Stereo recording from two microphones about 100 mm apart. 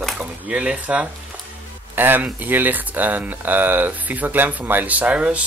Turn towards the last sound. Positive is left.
turn(degrees=-10)  # may be behind; listen again after turning